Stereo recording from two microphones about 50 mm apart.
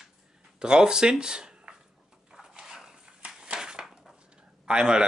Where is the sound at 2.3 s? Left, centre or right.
Centre.